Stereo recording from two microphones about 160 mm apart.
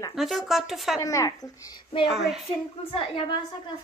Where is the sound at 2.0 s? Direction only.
Centre (ahead or behind).